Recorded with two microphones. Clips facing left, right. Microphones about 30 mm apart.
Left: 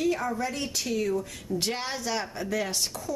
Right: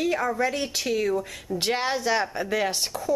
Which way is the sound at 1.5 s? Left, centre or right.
Right.